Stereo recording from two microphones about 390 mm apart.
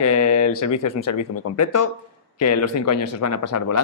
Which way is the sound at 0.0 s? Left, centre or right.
Left.